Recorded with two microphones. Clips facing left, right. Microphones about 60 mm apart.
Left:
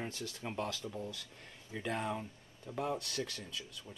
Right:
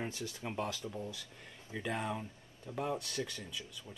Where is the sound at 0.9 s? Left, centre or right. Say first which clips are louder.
Even; centre.